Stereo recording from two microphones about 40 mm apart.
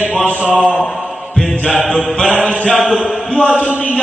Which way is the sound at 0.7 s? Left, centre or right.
Left.